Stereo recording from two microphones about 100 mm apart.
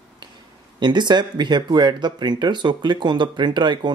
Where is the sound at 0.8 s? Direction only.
50° right (ahead or behind).